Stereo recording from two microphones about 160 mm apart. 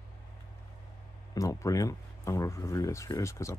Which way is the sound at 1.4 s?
20° left (ahead or behind).